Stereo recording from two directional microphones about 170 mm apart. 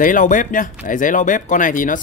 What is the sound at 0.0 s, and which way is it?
Speech, 50° left (ahead or behind).